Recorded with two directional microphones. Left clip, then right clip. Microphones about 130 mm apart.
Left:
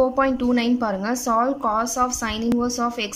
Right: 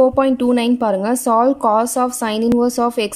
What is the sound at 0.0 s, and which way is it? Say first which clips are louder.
Speech: right 6 dB; 25° right (ahead or behind).